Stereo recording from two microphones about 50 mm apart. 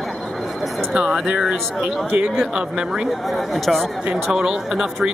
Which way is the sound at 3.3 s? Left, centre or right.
Centre.